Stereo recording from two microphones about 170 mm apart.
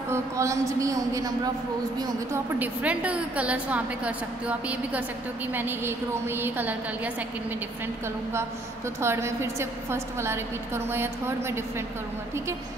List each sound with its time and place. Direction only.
0.1 s a woman's voice: 20° right (ahead or behind)
2.6 s a woman's voice: 10° right (ahead or behind)
9.0 s a woman's voice: 15° right (ahead or behind)